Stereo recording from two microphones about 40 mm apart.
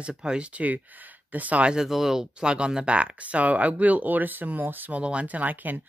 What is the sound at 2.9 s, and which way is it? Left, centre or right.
Speech, right.